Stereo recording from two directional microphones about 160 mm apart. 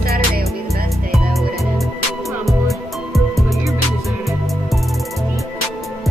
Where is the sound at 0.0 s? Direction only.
75° right (ahead or behind).